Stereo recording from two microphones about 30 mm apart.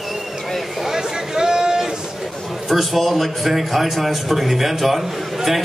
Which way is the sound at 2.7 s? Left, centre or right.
Centre.